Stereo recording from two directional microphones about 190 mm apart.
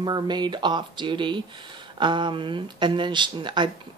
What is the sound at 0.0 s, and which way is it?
Speech, 25° right (ahead or behind).